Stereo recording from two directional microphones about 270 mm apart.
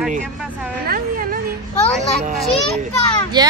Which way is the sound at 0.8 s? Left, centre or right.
Right.